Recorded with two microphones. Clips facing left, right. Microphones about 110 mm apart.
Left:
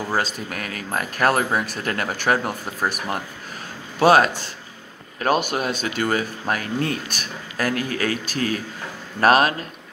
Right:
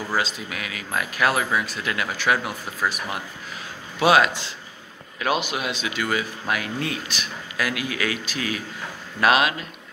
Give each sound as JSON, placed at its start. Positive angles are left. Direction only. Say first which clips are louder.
{"t": 0.1, "sound": "speech", "louder": "even", "side_deg": 45}